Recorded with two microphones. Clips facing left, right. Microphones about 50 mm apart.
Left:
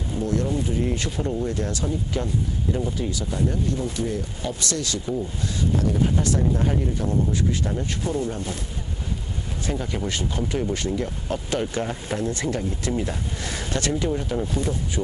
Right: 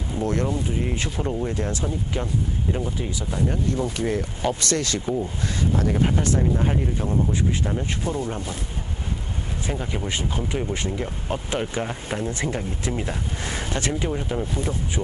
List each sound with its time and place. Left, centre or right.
0.2 s speech: right
0.7 s speech: right
3.9 s speech: right
6.5 s speech: right
9.7 s speech: centre
14.3 s speech: centre